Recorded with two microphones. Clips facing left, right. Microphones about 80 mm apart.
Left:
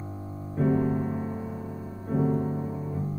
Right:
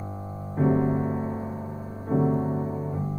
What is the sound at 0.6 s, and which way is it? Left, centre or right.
Music, right.